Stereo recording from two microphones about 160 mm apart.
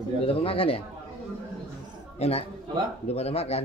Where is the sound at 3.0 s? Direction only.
40° left (ahead or behind).